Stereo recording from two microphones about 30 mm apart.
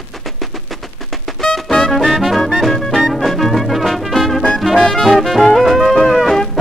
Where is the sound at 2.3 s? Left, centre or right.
Centre.